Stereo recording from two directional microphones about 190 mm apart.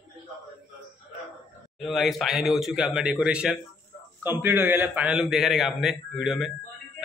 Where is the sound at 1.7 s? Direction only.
Centre (ahead or behind).